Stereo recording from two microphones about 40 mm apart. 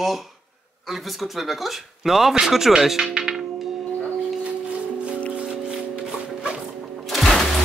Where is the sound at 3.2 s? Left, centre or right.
Centre.